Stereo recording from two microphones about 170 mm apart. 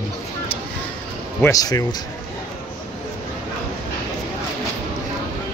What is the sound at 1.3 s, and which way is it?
Speech, 15° left (ahead or behind).